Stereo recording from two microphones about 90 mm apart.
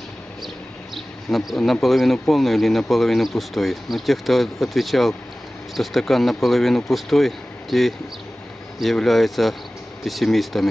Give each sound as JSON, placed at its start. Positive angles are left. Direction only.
{"t": 0.9, "sound": "speech", "side_deg": 0}